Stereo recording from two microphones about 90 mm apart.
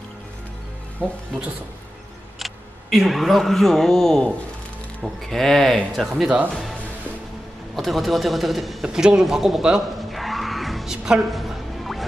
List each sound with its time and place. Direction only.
0.9 s speech: 20° right (ahead or behind)
2.3 s speech: centre (ahead or behind)
7.7 s a sound: centre (ahead or behind)